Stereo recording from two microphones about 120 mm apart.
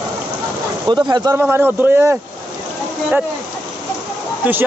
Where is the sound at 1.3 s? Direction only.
20° right (ahead or behind).